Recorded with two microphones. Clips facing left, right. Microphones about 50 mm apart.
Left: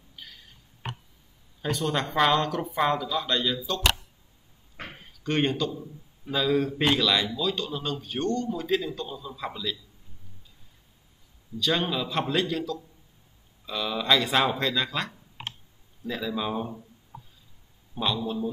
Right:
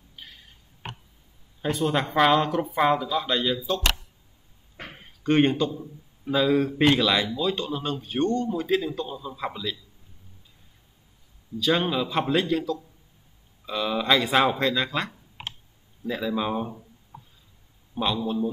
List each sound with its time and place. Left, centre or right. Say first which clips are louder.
0.1 s tick: even; right
1.6 s speech: right 3 dB; centre
5.2 s a man's voice: right 5 dB; centre
11.6 s speech: right 3 dB; centre
17.9 s speech: right 2 dB; centre